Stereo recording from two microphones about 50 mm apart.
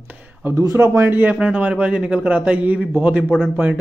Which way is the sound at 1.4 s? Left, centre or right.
Right.